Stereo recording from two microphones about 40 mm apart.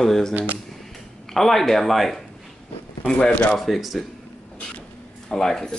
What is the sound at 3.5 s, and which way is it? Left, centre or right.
Speech, centre.